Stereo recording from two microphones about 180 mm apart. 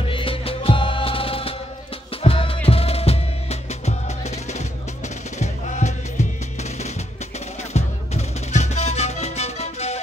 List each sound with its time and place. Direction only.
0.0 s music: 30° left (ahead or behind)
5.4 s music: 40° left (ahead or behind)
7.7 s music: 40° left (ahead or behind)